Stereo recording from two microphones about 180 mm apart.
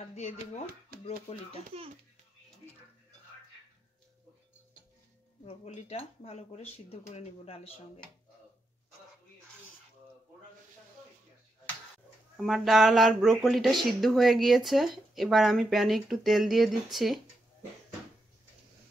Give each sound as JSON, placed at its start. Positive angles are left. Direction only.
{"t": 0.1, "sound": "speech", "side_deg": 40}
{"t": 5.4, "sound": "speech", "side_deg": 35}
{"t": 12.4, "sound": "speech", "side_deg": 0}